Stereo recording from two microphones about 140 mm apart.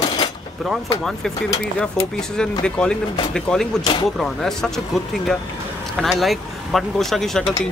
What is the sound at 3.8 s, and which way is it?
Speech, 30° left (ahead or behind).